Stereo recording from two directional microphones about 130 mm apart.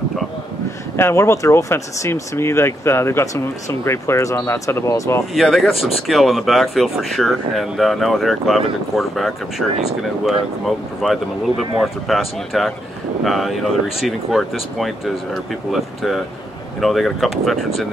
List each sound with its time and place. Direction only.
0.9 s speech: 20° left (ahead or behind)
5.3 s speech: centre (ahead or behind)